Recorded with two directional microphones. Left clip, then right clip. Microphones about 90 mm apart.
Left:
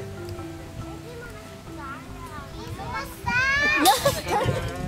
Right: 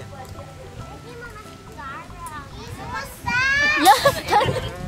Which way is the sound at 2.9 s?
Centre (ahead or behind).